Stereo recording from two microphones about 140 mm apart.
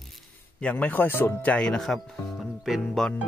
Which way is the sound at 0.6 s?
10° left (ahead or behind).